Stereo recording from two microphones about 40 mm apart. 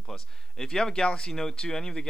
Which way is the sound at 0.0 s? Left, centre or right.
Centre.